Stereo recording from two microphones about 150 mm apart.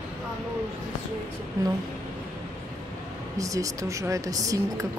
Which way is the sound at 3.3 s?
20° right (ahead or behind).